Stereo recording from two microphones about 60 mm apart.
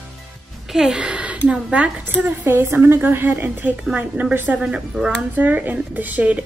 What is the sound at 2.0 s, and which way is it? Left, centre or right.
Speech, right.